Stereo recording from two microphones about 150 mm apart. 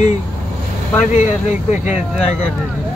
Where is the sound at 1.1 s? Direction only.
50° left (ahead or behind).